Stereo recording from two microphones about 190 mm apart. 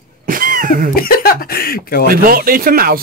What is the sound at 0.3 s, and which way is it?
Cough, 45° right (ahead or behind).